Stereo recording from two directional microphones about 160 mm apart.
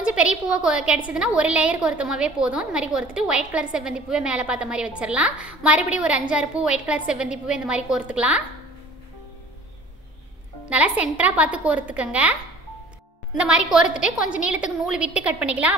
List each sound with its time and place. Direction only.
0.0 s a woman's voice: 5° right (ahead or behind)
10.7 s a woman's voice: 10° right (ahead or behind)
13.4 s a woman's voice: 5° right (ahead or behind)